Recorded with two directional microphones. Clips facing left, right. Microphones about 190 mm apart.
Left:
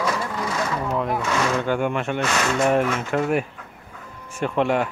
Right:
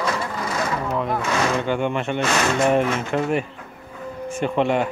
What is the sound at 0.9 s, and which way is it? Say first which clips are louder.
A man's voice: even; centre (ahead or behind).